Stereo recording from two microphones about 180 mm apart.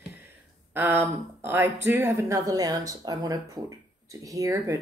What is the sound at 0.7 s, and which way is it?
Speech, 10° right (ahead or behind).